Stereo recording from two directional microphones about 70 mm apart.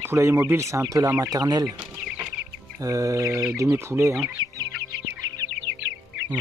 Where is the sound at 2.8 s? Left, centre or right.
Right.